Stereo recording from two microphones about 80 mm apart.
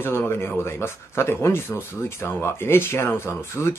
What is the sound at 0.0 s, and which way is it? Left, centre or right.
Speech, left.